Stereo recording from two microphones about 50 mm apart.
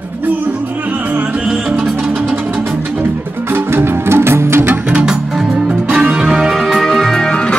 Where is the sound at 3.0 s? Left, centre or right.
Right.